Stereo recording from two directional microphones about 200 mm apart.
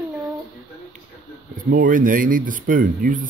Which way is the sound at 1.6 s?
40° right (ahead or behind).